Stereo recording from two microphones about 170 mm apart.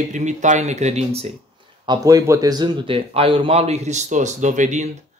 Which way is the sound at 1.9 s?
20° right (ahead or behind).